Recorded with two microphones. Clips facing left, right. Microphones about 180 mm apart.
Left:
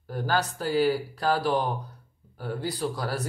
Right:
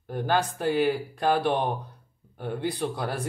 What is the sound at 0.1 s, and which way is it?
Speech, 25° right (ahead or behind).